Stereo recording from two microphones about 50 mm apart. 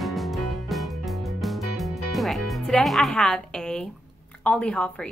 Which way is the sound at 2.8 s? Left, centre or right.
Centre.